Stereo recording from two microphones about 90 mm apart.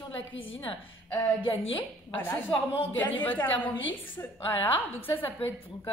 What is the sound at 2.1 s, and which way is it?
A woman's voice, 20° left (ahead or behind).